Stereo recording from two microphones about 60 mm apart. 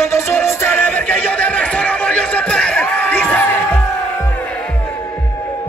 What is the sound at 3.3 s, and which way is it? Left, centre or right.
Music, left.